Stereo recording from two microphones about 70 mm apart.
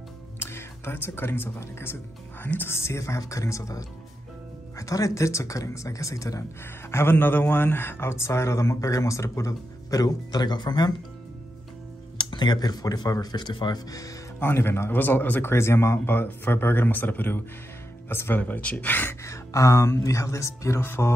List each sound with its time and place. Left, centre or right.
0.4 s speech: left
6.9 s speech: left
9.5 s speech: left
12.2 s speech: left
14.4 s speech: left
15.5 s speech: left
18.4 s speech: centre
19.2 s speech: left